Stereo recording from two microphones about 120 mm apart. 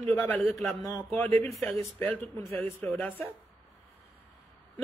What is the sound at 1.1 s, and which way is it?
Speech, 15° left (ahead or behind).